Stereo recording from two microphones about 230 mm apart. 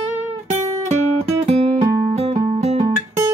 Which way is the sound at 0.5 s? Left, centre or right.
Right.